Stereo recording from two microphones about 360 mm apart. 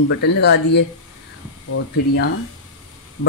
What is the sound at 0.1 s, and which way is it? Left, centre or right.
Speech, left.